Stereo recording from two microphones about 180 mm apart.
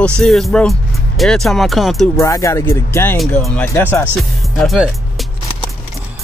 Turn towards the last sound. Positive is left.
turn(degrees=0)  # may be behind; listen again after turning